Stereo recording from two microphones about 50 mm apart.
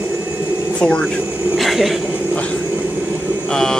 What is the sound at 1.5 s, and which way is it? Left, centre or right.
Speech, centre.